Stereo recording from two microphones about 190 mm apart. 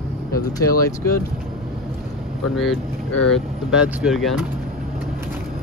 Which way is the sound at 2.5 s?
Centre (ahead or behind).